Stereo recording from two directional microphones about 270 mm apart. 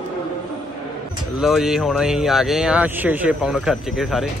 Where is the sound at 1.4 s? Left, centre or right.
Centre.